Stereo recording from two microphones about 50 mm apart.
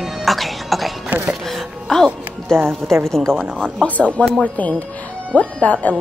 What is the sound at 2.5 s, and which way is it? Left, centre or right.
Speech, centre.